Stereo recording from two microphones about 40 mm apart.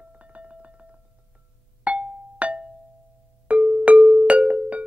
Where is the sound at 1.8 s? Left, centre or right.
Right.